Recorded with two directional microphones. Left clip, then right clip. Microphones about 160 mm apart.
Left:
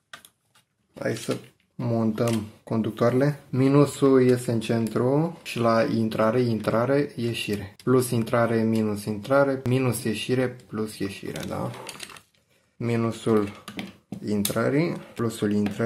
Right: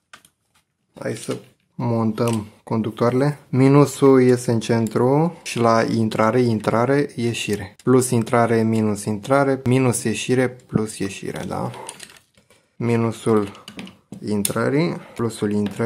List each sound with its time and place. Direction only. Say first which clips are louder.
0.9 s speech: right 1 dB; 20° right (ahead or behind)
1.8 s speech: right 4 dB; 40° right (ahead or behind)
3.5 s speech: right 6 dB; 50° right (ahead or behind)
11.5 s speech: right 4 dB; 40° right (ahead or behind)